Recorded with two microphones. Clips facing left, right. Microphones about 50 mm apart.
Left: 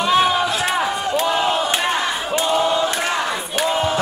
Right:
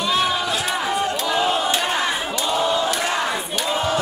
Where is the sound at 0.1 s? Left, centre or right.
Left.